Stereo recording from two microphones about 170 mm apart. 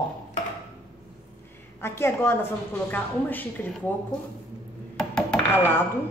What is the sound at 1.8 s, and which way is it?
A woman's voice, 15° left (ahead or behind).